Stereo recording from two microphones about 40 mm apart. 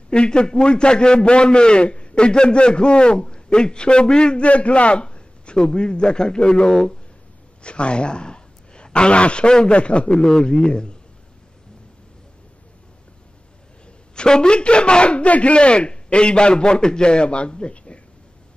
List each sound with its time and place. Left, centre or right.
0.1 s a man's voice: left
4.5 s a man's voice: left
14.1 s a man's voice: left